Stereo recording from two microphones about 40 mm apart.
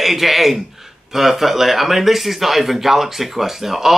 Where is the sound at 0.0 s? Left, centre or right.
Centre.